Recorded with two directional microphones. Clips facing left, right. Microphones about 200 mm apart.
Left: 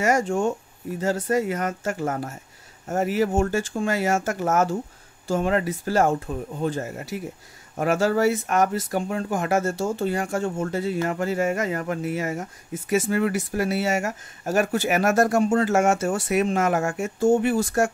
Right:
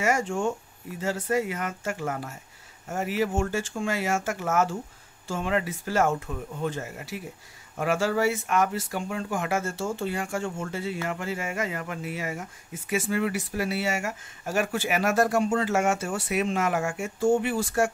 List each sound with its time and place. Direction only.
0.0 s speech: 40° left (ahead or behind)